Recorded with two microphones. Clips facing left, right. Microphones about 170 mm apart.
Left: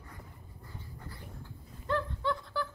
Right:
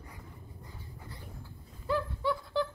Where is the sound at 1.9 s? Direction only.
5° right (ahead or behind).